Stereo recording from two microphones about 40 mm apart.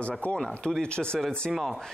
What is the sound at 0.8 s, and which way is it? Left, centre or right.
Speech, left.